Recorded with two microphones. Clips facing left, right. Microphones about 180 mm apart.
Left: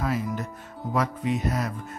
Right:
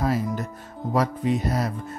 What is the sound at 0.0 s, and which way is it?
Music, 35° right (ahead or behind).